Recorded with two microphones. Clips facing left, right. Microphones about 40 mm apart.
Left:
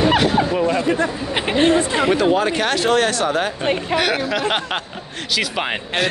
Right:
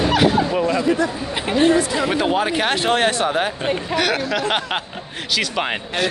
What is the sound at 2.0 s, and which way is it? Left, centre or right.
Speech, centre.